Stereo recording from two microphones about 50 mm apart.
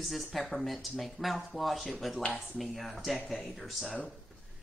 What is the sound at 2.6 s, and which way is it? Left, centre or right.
Speech, centre.